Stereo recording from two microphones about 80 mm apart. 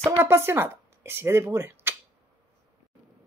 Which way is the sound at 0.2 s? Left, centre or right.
Right.